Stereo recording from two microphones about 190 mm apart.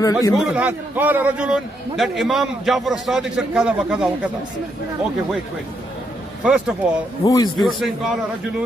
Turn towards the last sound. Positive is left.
turn(degrees=0)  # may be behind; listen again after turning